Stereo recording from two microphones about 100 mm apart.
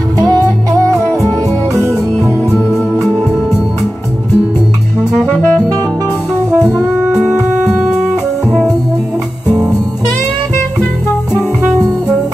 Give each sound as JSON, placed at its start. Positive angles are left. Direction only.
{"t": 0.3, "sound": "music", "side_deg": -35}
{"t": 5.2, "sound": "music", "side_deg": 20}